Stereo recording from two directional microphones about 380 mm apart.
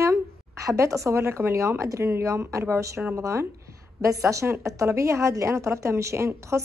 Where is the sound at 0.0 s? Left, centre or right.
Centre.